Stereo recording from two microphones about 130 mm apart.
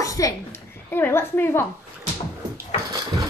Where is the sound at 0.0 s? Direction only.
25° left (ahead or behind).